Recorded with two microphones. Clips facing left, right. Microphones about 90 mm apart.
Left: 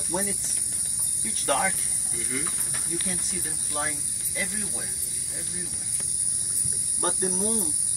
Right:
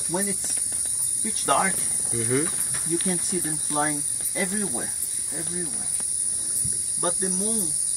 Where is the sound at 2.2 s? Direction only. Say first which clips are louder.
Right 10 dB; 45° right (ahead or behind).